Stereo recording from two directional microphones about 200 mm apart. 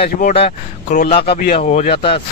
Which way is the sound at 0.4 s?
35° left (ahead or behind).